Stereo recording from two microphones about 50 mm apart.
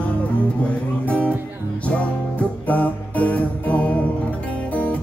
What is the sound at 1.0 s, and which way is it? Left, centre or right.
Speech, left.